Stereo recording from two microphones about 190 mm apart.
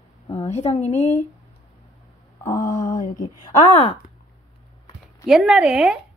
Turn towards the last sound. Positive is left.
turn(degrees=-5)  # may be behind; listen again after turning